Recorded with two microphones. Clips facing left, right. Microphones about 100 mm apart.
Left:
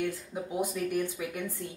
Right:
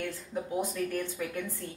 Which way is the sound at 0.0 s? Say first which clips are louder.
Left 2 dB; 15° left (ahead or behind).